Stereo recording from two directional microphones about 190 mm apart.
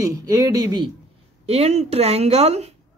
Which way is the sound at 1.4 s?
35° right (ahead or behind).